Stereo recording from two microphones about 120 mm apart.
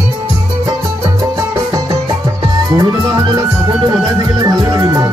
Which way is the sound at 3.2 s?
35° right (ahead or behind).